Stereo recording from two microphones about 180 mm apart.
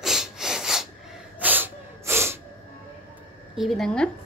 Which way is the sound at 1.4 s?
10° right (ahead or behind).